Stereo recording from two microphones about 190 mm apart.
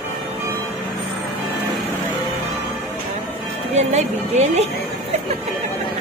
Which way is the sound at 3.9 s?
35° right (ahead or behind).